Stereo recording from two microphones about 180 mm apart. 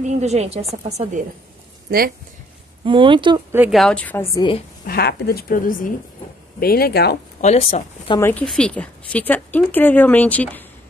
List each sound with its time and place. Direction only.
0.0 s a woman's voice: 40° right (ahead or behind)
1.9 s speech: 55° right (ahead or behind)
2.8 s speech: 30° right (ahead or behind)
3.7 s speech: 5° left (ahead or behind)
4.8 s a woman's voice: 60° left (ahead or behind)
7.4 s speech: 35° left (ahead or behind)
8.2 s speech: 10° left (ahead or behind)